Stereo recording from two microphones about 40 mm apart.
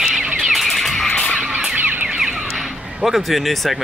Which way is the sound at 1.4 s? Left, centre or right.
Right.